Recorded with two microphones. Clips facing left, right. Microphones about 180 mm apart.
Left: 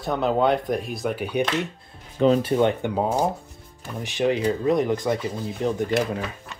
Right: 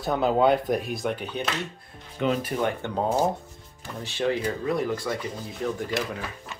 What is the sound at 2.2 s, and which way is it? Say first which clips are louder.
Speech: left 7 dB; 30° left (ahead or behind).